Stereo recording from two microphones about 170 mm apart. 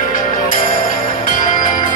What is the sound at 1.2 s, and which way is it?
Bell, 50° left (ahead or behind).